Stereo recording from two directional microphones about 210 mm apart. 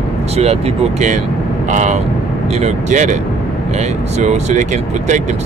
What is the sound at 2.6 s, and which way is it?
Speech, 35° right (ahead or behind).